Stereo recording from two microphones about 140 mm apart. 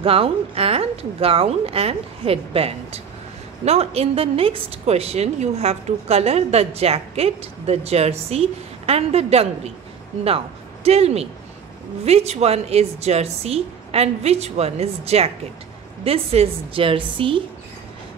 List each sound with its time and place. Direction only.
0.0 s a woman's voice: 45° right (ahead or behind)